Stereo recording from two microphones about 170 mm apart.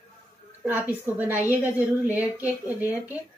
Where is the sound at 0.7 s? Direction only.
10° right (ahead or behind).